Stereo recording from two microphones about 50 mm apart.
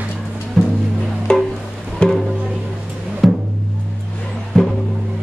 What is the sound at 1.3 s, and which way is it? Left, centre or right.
Music, centre.